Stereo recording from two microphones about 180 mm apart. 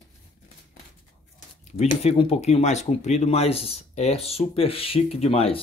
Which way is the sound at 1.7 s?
35° left (ahead or behind).